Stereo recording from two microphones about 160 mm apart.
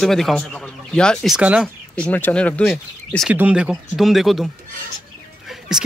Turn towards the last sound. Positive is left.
turn(degrees=-5)  # may be behind; listen again after turning